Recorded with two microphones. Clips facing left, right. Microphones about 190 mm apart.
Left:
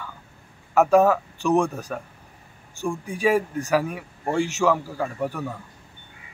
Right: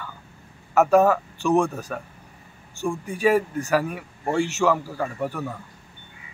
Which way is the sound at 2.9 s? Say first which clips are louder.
Right 1 dB; centre (ahead or behind).